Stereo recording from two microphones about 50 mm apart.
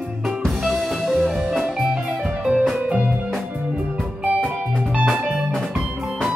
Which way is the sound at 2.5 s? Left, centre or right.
Right.